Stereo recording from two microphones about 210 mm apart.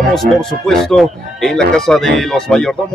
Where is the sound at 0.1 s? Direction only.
Centre (ahead or behind).